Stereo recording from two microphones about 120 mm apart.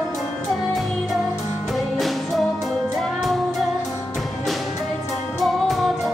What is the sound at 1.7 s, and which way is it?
Music, centre (ahead or behind).